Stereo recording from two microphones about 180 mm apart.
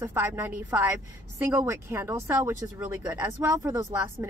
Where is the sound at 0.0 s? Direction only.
10° right (ahead or behind).